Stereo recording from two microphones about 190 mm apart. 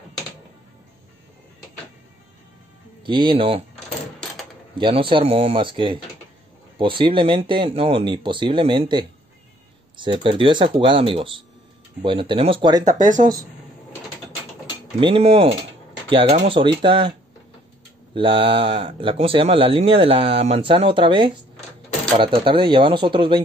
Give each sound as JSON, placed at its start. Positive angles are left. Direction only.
{"t": 3.0, "sound": "speech", "side_deg": -25}
{"t": 4.7, "sound": "speech", "side_deg": -25}
{"t": 15.0, "sound": "speech", "side_deg": -30}
{"t": 18.1, "sound": "speech", "side_deg": -25}